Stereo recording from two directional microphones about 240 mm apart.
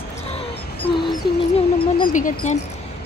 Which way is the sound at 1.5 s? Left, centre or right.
Left.